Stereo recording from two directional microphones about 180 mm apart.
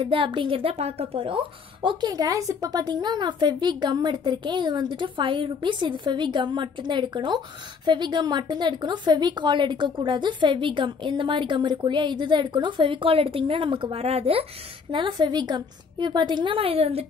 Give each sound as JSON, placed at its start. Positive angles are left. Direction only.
{"t": 0.0, "sound": "a woman's voice", "side_deg": -30}